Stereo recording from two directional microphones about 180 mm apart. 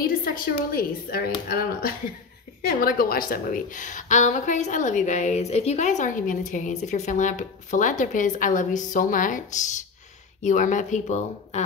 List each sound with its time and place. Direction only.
0.0 s a woman's voice: 55° left (ahead or behind)